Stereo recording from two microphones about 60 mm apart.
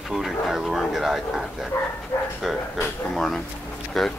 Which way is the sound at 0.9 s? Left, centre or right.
Centre.